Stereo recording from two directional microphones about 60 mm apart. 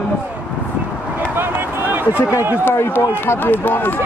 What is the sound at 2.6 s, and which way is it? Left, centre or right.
Speech, left.